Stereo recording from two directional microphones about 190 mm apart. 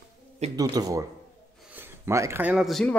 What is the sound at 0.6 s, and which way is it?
Speech, 20° right (ahead or behind).